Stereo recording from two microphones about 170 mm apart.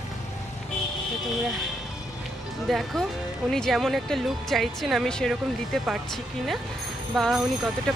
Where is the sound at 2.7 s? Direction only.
Centre (ahead or behind).